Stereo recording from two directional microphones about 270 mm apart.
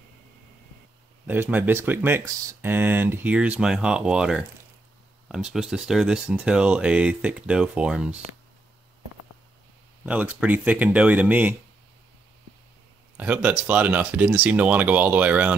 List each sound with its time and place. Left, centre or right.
1.2 s speech: centre
10.0 s speech: centre
13.2 s speech: centre